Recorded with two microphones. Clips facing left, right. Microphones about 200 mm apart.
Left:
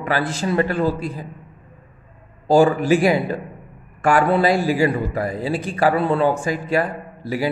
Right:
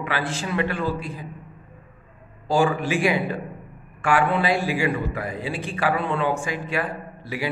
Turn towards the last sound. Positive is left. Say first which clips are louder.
# left 6 dB
turn(degrees=40)  # may be behind; listen again after turning